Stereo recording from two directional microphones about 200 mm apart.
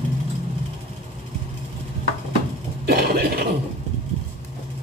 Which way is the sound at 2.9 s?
50° right (ahead or behind).